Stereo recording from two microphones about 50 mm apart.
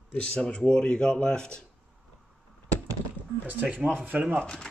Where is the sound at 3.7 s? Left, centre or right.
Right.